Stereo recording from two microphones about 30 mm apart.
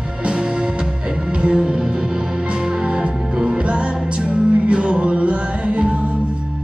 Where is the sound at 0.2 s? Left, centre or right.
Right.